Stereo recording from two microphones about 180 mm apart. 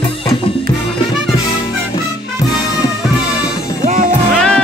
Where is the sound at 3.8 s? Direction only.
45° right (ahead or behind).